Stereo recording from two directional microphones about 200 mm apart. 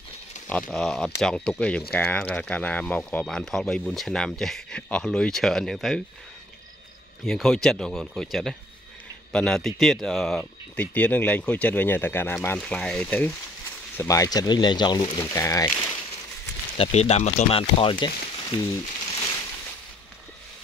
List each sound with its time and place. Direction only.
0.5 s speech: 5° left (ahead or behind)
7.2 s speech: centre (ahead or behind)
16.7 s speech: 30° left (ahead or behind)